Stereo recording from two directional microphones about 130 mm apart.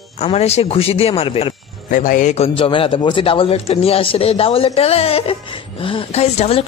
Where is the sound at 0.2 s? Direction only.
55° left (ahead or behind).